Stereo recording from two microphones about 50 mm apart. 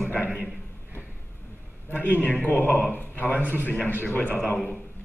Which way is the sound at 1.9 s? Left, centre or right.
Left.